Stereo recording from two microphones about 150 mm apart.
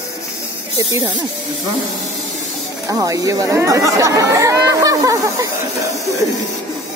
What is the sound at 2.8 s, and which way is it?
Speech, 20° right (ahead or behind).